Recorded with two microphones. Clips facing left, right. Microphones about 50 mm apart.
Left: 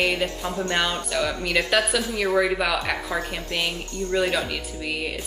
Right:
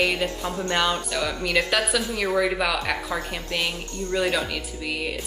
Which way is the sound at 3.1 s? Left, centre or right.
Left.